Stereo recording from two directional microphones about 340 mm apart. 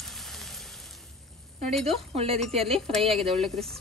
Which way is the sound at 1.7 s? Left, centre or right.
Centre.